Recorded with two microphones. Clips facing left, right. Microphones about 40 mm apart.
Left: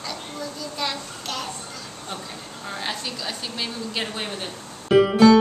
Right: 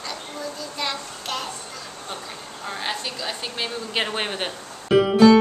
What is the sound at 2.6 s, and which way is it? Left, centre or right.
A woman's voice, centre.